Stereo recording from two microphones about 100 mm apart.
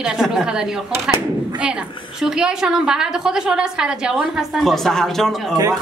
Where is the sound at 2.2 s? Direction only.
5° right (ahead or behind).